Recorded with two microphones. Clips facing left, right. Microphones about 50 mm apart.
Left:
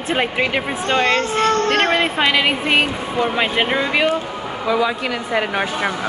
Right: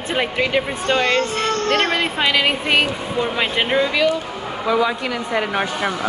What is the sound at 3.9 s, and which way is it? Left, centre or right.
Speech, left.